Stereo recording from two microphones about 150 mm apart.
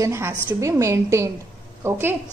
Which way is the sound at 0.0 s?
15° right (ahead or behind).